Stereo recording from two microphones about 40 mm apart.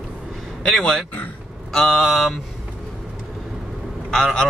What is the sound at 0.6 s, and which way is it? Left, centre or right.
Speech, centre.